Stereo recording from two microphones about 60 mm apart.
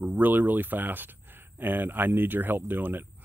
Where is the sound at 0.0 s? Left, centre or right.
Right.